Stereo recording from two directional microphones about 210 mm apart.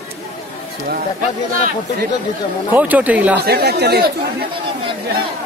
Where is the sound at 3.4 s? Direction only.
50° right (ahead or behind).